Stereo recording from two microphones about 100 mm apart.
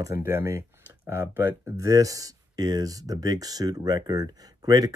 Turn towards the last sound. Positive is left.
turn(degrees=-40)  # may be behind; listen again after turning